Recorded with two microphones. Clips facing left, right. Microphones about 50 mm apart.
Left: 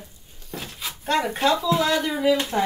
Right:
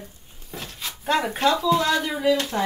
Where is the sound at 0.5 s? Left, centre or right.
Centre.